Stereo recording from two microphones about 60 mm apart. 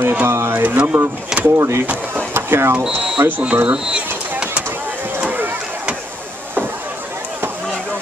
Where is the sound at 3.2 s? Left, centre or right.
Right.